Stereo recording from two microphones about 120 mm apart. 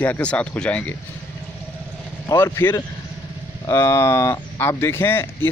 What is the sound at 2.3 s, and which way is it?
Speech, 25° left (ahead or behind).